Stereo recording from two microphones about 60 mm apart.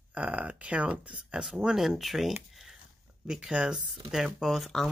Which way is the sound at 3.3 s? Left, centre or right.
Centre.